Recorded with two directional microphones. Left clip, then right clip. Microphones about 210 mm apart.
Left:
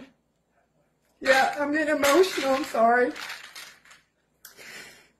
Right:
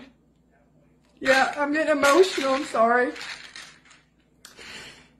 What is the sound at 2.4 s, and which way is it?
Speech, 15° right (ahead or behind).